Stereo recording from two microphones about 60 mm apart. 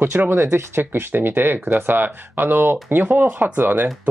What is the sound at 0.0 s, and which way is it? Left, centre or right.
Speech, right.